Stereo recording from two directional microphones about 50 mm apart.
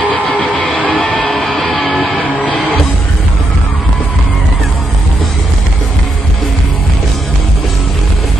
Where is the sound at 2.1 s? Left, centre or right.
Left.